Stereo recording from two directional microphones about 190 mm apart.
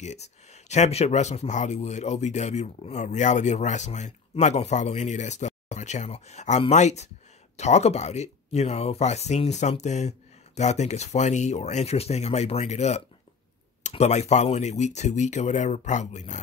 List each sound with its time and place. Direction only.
0.0 s speech: 35° left (ahead or behind)